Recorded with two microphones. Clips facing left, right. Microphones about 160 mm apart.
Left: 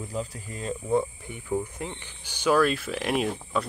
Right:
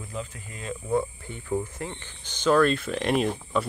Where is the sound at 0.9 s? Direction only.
15° left (ahead or behind).